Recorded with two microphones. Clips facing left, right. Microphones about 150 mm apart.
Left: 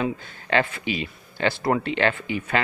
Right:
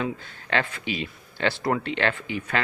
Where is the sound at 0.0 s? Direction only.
5° left (ahead or behind).